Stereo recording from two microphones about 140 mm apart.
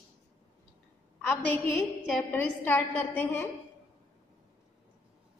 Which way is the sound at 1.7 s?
10° left (ahead or behind).